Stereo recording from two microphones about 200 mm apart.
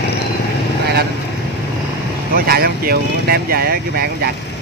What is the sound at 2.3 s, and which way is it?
Speech, 50° right (ahead or behind).